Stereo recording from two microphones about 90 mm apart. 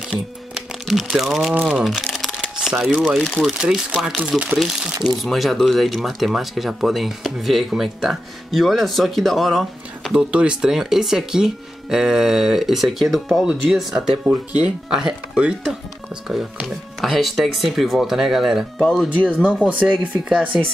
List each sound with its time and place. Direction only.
0.1 s music: 5° right (ahead or behind)
1.1 s speech: 5° right (ahead or behind)
2.1 s shuffling cards: centre (ahead or behind)
2.5 s speech: 5° right (ahead or behind)
4.6 s speech: centre (ahead or behind)
18.8 s speech: 5° left (ahead or behind)
19.2 s speech: 10° right (ahead or behind)